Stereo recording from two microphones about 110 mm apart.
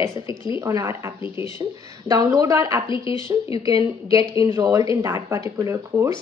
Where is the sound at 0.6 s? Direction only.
25° right (ahead or behind).